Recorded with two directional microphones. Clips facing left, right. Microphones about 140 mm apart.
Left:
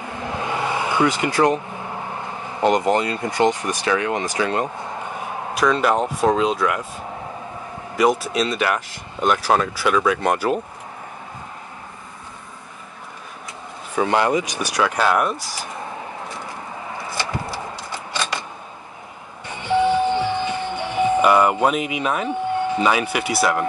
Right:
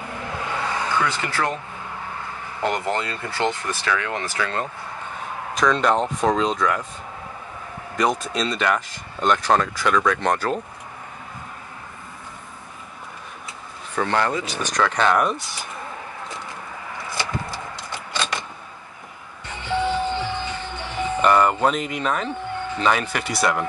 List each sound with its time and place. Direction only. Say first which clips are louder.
0.4 s speech: left 3 dB; 20° left (ahead or behind)
5.5 s speech: left 1 dB; 5° left (ahead or behind)
7.9 s speech: left 4 dB; 5° left (ahead or behind)
13.9 s speech: left 4 dB; 15° left (ahead or behind)
19.4 s music: left 5 dB; 15° left (ahead or behind)